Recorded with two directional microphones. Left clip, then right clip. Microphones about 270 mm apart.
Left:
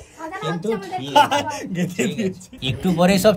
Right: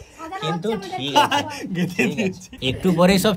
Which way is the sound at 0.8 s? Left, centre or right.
Centre.